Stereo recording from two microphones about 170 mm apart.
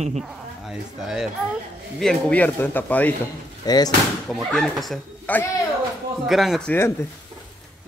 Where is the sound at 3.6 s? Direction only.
25° left (ahead or behind).